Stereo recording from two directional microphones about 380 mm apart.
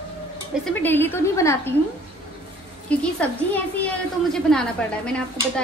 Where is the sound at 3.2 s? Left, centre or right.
Centre.